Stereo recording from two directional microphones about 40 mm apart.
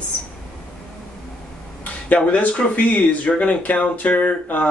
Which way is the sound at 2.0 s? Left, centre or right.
Left.